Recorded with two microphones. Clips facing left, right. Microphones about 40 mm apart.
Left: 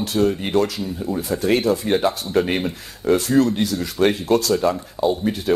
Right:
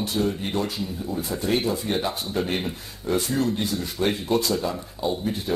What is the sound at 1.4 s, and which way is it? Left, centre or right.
Speech, left.